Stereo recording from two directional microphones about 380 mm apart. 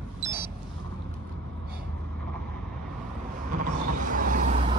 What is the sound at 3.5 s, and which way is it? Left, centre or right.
Vehicle, right.